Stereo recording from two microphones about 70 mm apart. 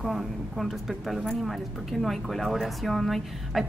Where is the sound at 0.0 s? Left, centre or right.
Centre.